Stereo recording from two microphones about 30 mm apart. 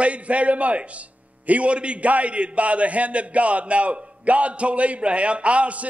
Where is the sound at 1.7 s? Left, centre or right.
Right.